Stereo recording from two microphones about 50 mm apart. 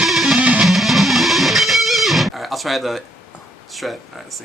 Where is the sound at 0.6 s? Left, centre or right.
Centre.